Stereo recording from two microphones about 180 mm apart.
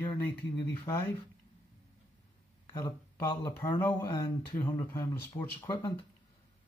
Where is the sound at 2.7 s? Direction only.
15° left (ahead or behind).